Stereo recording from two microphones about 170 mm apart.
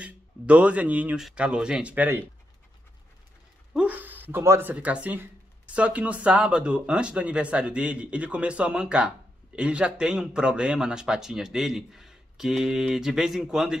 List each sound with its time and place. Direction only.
0.0 s speech: 5° right (ahead or behind)
3.7 s speech: 10° right (ahead or behind)